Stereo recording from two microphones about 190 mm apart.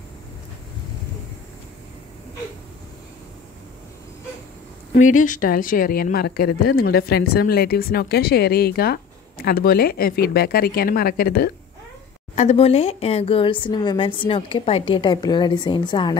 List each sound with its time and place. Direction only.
4.9 s speech: 40° left (ahead or behind)
12.4 s speech: 35° left (ahead or behind)